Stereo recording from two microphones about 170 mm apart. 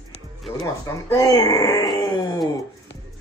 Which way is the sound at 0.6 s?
20° left (ahead or behind).